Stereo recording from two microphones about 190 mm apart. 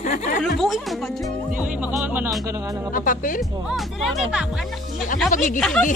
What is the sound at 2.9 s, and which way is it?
Speech, 45° left (ahead or behind).